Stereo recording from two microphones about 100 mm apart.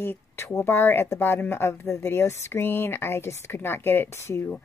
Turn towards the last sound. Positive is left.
turn(degrees=25)  # may be behind; listen again after turning